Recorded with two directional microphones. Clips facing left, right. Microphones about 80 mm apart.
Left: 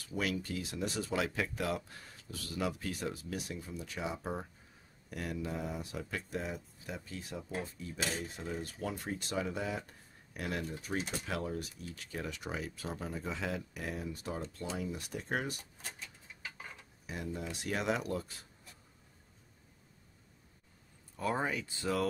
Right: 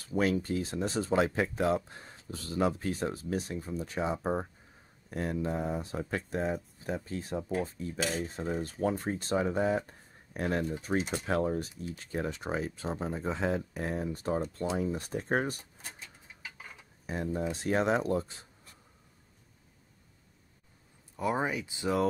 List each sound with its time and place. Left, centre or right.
0.0 s speech: right
11.7 s speech: right
12.0 s speech: right
17.0 s speech: right
21.2 s speech: centre